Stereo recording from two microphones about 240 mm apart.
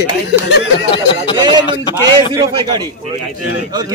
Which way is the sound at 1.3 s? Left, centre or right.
Centre.